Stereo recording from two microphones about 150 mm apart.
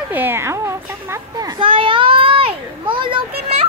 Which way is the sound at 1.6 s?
35° right (ahead or behind).